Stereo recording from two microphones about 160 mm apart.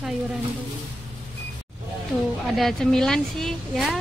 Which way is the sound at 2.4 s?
Centre (ahead or behind).